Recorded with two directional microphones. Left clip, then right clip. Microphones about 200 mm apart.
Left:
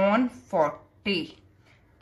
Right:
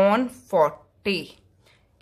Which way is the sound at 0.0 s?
50° right (ahead or behind).